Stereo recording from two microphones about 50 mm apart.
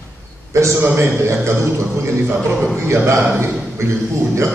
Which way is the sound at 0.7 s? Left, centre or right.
Right.